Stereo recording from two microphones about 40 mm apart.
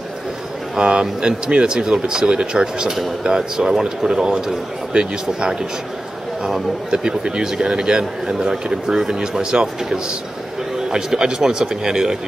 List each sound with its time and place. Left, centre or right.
0.7 s speech: right
10.9 s speech: centre